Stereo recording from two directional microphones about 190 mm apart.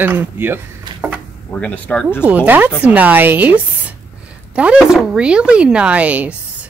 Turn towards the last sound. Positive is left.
turn(degrees=-5)  # may be behind; listen again after turning